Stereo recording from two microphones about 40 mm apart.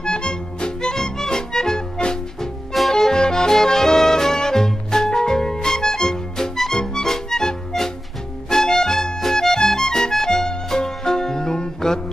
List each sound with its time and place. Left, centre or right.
0.0 s music: left